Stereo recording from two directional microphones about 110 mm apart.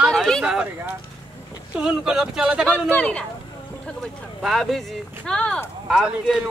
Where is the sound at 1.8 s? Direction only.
5° right (ahead or behind).